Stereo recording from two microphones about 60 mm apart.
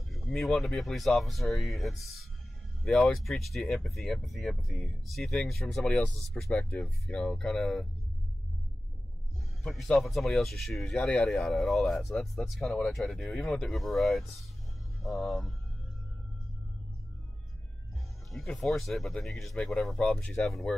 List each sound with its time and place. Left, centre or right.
0.1 s a sound: centre
0.6 s speech: centre
9.6 s speech: centre
11.0 s speech: centre
11.2 s speech: centre
13.7 s speech: centre
18.6 s speech: centre
20.0 s speech: centre